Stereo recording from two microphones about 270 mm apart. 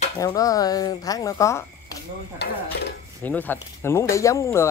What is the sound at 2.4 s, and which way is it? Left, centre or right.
Stir, left.